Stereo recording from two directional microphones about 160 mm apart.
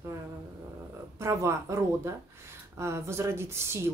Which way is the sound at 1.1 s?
15° right (ahead or behind).